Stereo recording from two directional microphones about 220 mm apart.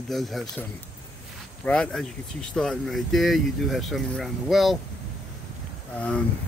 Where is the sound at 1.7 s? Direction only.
5° left (ahead or behind).